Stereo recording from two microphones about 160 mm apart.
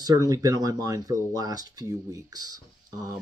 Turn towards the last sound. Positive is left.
turn(degrees=-25)  # may be behind; listen again after turning